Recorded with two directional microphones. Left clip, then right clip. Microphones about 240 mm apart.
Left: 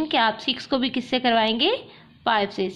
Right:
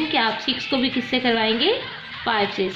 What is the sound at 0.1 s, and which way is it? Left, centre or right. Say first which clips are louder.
A woman's voice: left 2 dB; left.